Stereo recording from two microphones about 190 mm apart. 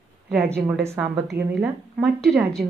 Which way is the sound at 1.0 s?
5° right (ahead or behind).